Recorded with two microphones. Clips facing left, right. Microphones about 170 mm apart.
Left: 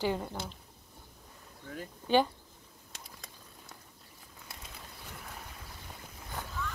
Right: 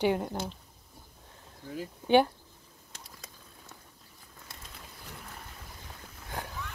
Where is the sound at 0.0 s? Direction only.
15° right (ahead or behind).